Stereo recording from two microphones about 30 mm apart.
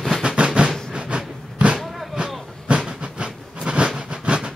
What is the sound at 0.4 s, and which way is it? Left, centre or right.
Train, right.